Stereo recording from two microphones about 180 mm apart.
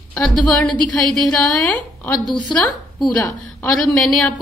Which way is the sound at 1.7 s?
5° left (ahead or behind).